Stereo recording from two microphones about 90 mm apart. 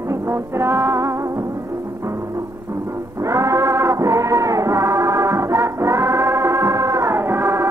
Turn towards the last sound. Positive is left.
turn(degrees=-30)  # may be behind; listen again after turning